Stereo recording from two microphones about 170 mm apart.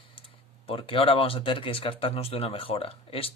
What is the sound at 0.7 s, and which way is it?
Speech, 35° left (ahead or behind).